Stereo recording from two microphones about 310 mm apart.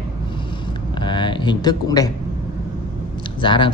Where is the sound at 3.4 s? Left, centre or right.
Centre.